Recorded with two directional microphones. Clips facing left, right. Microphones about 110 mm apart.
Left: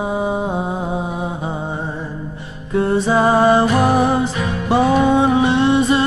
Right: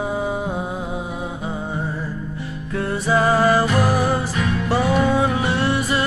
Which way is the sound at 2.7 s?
25° left (ahead or behind).